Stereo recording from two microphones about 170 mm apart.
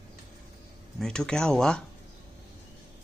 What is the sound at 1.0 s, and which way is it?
Speech, 5° left (ahead or behind).